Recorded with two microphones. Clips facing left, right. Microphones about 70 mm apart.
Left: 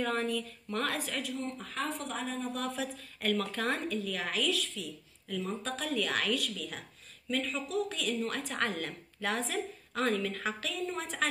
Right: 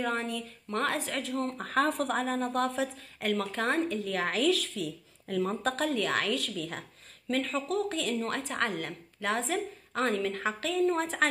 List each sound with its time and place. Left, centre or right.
0.0 s a woman's voice: right
1.4 s speech: right
2.4 s a woman's voice: right
2.7 s a woman's voice: right
4.5 s speech: right
5.9 s a woman's voice: right
7.2 s speech: right
8.0 s a woman's voice: right